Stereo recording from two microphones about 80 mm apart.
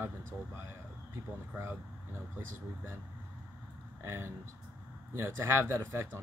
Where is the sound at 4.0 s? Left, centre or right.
Right.